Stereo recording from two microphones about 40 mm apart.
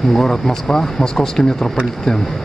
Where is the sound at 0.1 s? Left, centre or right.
Centre.